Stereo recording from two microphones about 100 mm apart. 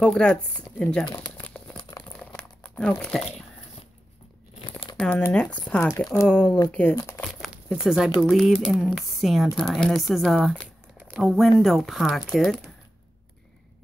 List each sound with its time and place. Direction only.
0.0 s speech: 10° left (ahead or behind)
1.8 s crumpling: 40° left (ahead or behind)
2.1 s crumpling: 15° left (ahead or behind)
4.9 s speech: 10° left (ahead or behind)
5.8 s speech: 30° left (ahead or behind)
6.2 s speech: 10° left (ahead or behind)
7.5 s speech: 5° right (ahead or behind)